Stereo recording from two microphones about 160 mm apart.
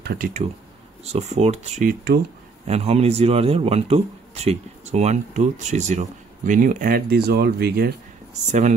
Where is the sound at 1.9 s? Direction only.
80° right.